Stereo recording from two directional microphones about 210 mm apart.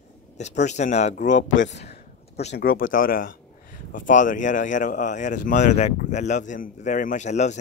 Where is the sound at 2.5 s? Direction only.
45° left (ahead or behind).